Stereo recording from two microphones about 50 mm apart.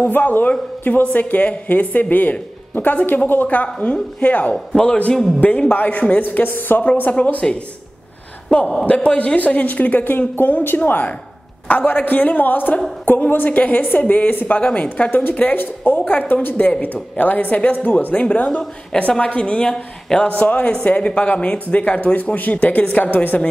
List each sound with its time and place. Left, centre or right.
0.0 s speech: left
8.8 s speech: left
11.6 s speech: left
15.0 s a woman's voice: left
19.7 s speech: centre
20.2 s speech: left